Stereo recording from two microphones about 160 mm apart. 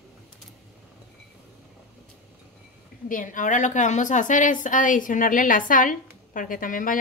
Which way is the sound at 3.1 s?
55° left (ahead or behind).